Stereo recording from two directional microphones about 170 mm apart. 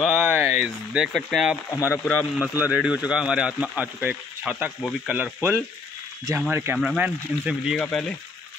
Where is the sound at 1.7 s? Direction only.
15° left (ahead or behind).